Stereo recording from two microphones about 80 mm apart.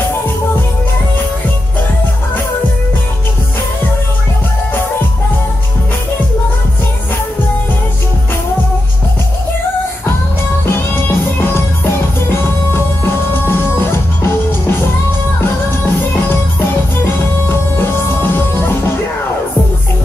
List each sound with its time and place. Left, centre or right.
10.7 s music: left
17.0 s music: left